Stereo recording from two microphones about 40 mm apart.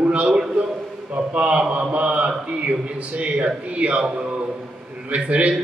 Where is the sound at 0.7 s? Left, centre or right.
Right.